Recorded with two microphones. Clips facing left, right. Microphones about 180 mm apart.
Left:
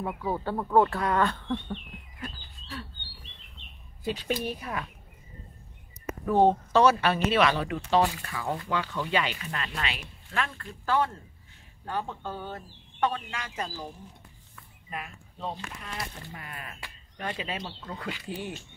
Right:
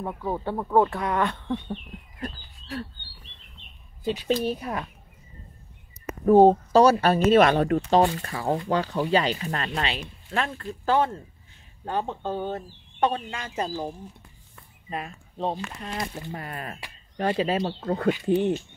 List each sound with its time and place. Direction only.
0.0 s speech: 5° left (ahead or behind)
0.6 s speech: 10° right (ahead or behind)
2.1 s bird: 45° right (ahead or behind)
4.5 s speech: 35° right (ahead or behind)
6.2 s speech: 40° right (ahead or behind)
14.5 s a sound: 30° right (ahead or behind)
15.8 s speech: 40° right (ahead or behind)
18.3 s speech: 25° right (ahead or behind)